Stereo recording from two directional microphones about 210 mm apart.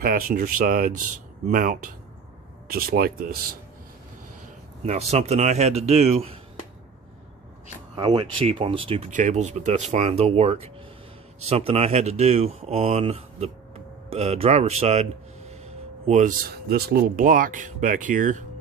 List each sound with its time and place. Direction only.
0.0 s speech: 40° right (ahead or behind)
4.8 s speech: 30° right (ahead or behind)
7.9 s speech: 20° right (ahead or behind); by 18.4 s 40° right (ahead or behind)